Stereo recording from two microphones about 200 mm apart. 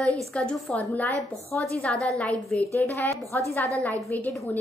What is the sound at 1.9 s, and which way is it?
Speech, 15° right (ahead or behind).